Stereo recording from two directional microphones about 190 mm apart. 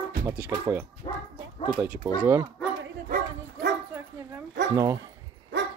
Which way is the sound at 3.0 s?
50° right (ahead or behind).